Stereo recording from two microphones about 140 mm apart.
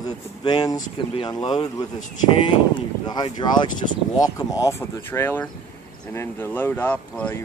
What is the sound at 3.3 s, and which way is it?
Speech, 30° left (ahead or behind).